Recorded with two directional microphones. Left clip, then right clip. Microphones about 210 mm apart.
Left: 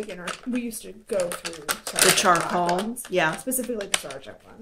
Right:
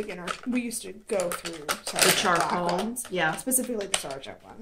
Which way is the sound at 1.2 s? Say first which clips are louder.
Left 3 dB; 25° left (ahead or behind).